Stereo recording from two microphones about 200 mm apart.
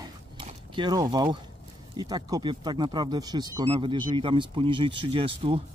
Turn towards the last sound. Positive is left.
turn(degrees=-25)  # may be behind; listen again after turning